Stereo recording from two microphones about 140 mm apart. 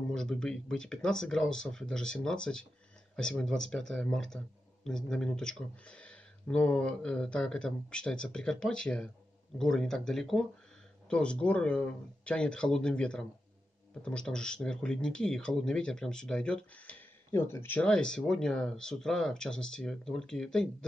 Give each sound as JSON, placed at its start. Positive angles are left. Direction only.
{"t": 0.1, "sound": "speech", "side_deg": 5}